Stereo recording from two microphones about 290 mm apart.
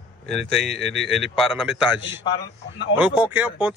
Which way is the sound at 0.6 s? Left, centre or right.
Right.